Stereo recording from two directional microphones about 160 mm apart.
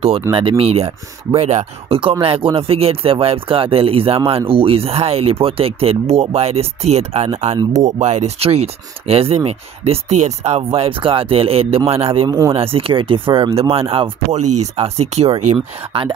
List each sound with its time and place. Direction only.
0.3 s speech: 35° right (ahead or behind)
12.3 s speech: 20° right (ahead or behind)
12.5 s speech: 35° right (ahead or behind)